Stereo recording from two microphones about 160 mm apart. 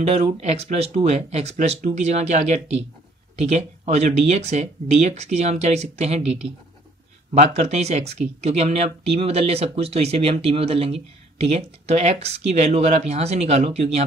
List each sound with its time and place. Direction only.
0.0 s speech: 45° right (ahead or behind)